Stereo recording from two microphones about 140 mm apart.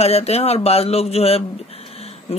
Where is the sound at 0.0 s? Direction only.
50° left (ahead or behind).